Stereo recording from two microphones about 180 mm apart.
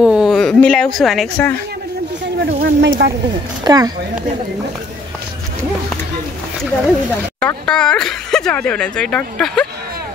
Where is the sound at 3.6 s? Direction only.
20° right (ahead or behind).